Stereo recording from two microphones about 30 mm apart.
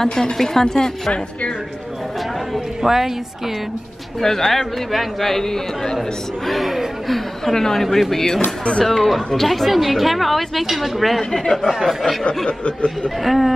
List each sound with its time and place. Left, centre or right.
0.2 s speech: centre
2.8 s a woman's voice: centre
4.2 s speech: centre
4.5 s a woman's voice: centre
5.3 s speech: centre
6.4 s a woman's voice: centre
7.5 s a woman's voice: centre
12.4 s speech: left
13.2 s a woman's voice: centre